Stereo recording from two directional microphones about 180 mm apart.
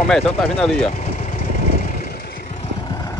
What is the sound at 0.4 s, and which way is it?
Speech, 5° left (ahead or behind).